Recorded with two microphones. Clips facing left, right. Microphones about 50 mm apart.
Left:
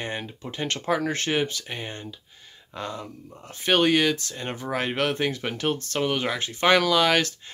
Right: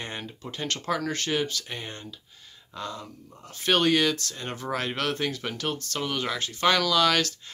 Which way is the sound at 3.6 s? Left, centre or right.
Centre.